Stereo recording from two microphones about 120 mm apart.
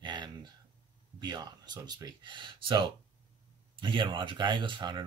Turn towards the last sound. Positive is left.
turn(degrees=-40)  # may be behind; listen again after turning